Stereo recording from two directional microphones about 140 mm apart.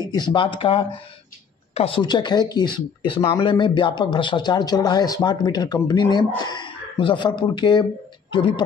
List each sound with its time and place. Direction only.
0.0 s speech: 30° left (ahead or behind)